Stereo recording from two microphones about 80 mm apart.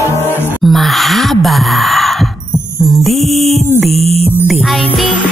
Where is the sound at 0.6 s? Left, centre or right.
Centre.